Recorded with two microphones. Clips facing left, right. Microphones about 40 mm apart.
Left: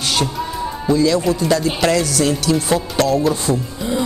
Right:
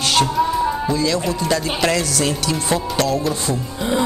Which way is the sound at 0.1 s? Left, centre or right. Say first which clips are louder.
Right 6 dB; centre.